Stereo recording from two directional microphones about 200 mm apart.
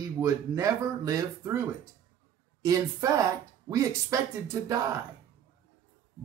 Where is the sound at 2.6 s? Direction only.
15° right (ahead or behind).